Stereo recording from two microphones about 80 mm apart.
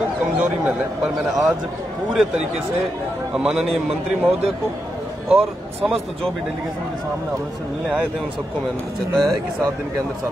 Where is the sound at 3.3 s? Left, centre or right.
Centre.